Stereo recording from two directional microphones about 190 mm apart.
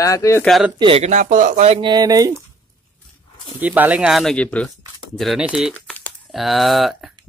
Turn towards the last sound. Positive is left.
turn(degrees=0)  # may be behind; listen again after turning